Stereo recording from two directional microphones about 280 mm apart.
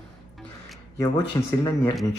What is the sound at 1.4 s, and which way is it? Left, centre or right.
Speech, centre.